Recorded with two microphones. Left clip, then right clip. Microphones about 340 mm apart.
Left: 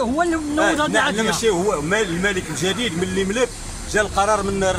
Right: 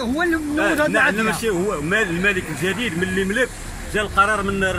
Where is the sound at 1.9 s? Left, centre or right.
Left.